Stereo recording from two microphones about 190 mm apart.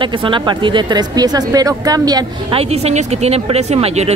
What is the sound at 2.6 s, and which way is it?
Speech, 35° right (ahead or behind).